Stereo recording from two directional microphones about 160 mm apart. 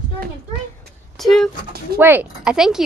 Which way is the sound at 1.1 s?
Centre (ahead or behind).